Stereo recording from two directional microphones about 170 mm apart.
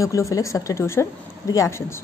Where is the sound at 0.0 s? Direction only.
20° left (ahead or behind).